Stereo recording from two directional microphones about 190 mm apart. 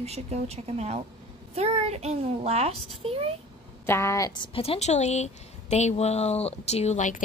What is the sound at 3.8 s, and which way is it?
Speech, 15° left (ahead or behind).